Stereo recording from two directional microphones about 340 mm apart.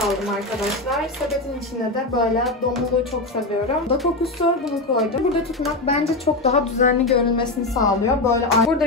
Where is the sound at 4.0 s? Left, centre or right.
Centre.